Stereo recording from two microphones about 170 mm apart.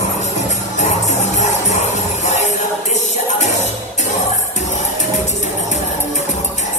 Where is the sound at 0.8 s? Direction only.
45° left (ahead or behind).